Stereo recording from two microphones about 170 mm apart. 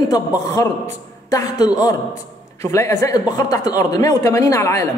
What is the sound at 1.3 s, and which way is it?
A man's voice, 20° left (ahead or behind).